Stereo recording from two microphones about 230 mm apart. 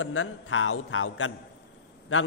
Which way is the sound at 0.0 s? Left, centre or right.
Left.